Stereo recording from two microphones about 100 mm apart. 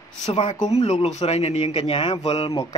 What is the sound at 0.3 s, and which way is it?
Speech, 90° left.